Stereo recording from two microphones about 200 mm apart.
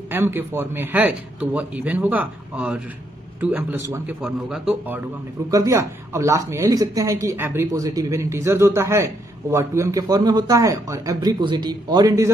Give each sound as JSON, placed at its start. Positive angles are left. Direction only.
{"t": 0.1, "sound": "a man's voice", "side_deg": -10}
{"t": 5.5, "sound": "speech", "side_deg": -15}